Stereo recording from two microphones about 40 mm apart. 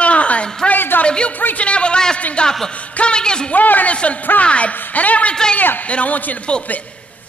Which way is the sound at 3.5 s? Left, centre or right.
Left.